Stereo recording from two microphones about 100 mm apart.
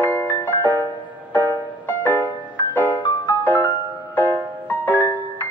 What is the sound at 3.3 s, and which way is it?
Music, 25° left (ahead or behind).